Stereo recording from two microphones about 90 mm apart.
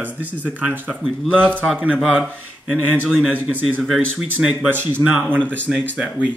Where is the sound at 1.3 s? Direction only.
15° left (ahead or behind).